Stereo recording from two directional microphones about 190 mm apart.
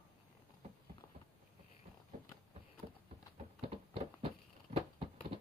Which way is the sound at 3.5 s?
30° right (ahead or behind).